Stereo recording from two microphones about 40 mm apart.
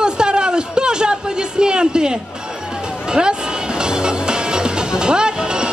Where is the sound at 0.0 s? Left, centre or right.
Right.